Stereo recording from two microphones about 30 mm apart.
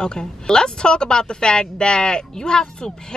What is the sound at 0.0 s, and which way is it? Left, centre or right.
Speech, left.